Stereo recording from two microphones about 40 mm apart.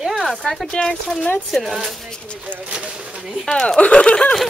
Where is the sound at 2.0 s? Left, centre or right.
Left.